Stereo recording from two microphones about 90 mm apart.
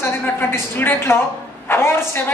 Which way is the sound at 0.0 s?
25° left (ahead or behind).